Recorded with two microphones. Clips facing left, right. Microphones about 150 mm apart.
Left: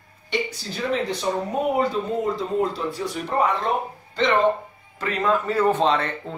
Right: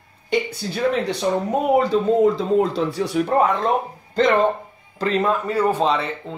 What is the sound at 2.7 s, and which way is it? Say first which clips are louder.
Speech: right 6 dB; 70° right (ahead or behind).